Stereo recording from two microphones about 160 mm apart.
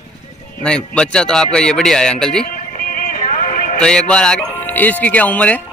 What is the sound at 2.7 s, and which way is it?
Music, 60° left (ahead or behind).